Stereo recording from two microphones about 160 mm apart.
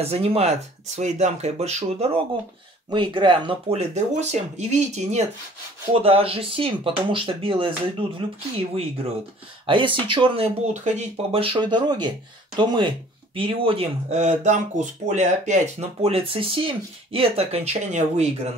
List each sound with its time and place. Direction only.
0.0 s speech: 40° right (ahead or behind)
2.9 s speech: 30° right (ahead or behind)
3.7 s speech: 45° right (ahead or behind)
9.7 s speech: 30° right (ahead or behind)